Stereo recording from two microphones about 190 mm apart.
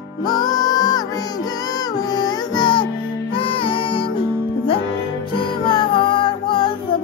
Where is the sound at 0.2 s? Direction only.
20° left (ahead or behind).